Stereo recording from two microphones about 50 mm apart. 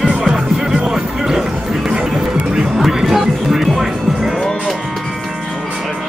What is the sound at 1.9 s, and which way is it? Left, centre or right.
Music, centre.